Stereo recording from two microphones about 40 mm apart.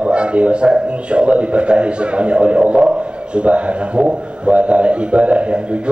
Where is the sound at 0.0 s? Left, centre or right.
Right.